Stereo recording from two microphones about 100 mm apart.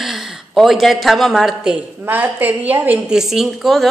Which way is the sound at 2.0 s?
20° right (ahead or behind).